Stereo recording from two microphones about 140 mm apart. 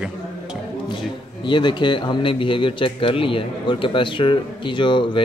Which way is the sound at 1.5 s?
35° left (ahead or behind).